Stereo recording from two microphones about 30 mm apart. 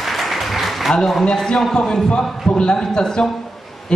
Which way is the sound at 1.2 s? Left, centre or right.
Left.